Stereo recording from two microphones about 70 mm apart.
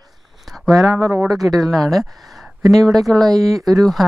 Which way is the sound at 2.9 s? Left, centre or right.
Right.